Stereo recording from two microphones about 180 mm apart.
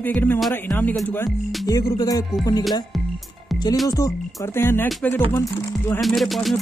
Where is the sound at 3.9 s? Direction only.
20° left (ahead or behind).